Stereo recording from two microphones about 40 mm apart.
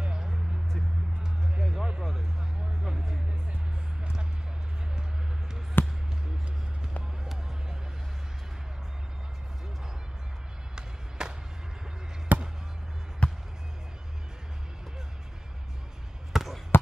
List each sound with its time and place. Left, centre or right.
0.0 s music: centre
1.6 s music: centre
5.8 s basketball bounce: left
10.8 s music: centre
12.3 s basketball bounce: right
13.2 s music: left
16.3 s basketball bounce: centre